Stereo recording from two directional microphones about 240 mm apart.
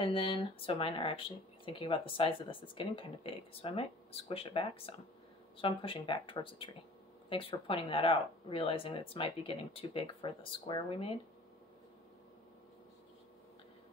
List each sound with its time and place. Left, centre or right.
0.0 s speech: left